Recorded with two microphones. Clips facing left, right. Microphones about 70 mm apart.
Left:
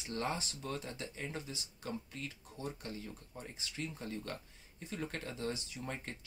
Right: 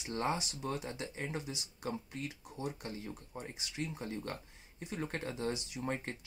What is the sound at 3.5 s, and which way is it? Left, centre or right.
Speech, centre.